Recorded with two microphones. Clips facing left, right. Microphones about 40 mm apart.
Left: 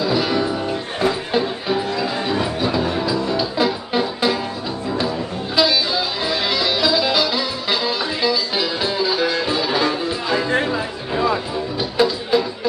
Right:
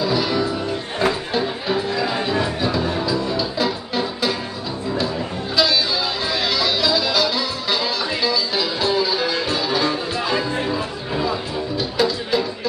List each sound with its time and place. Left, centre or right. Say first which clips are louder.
0.0 s music: left 1 dB; centre
1.7 s music: right 1 dB; centre
5.6 s music: left 1 dB; centre